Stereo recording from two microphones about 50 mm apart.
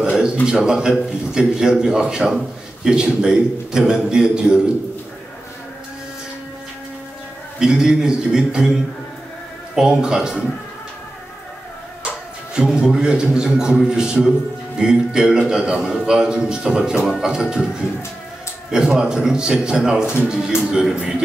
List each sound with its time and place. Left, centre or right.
0.0 s a sound: centre
0.5 s a man's voice: centre
7.5 s a man's voice: centre
9.8 s a man's voice: centre
12.7 s a man's voice: centre
18.7 s a man's voice: centre